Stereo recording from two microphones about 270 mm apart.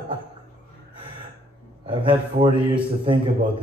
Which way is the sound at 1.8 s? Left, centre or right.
Centre.